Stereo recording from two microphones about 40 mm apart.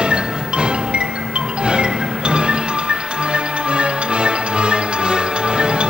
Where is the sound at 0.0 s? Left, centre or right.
Right.